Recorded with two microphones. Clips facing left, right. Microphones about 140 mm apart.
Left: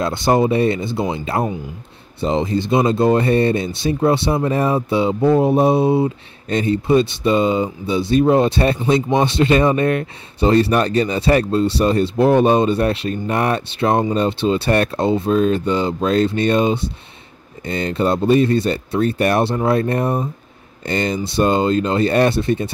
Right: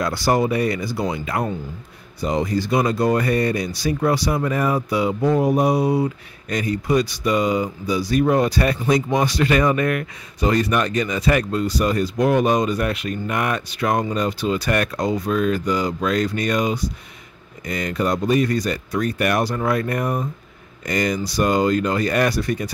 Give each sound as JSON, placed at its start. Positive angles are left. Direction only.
{"t": 0.0, "sound": "speech", "side_deg": 25}